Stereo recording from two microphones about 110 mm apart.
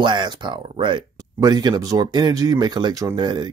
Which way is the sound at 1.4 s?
35° right (ahead or behind).